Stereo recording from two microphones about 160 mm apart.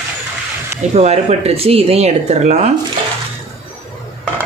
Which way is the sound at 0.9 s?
40° right (ahead or behind).